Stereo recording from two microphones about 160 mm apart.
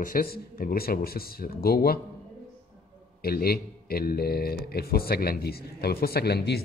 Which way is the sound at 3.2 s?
75° left (ahead or behind).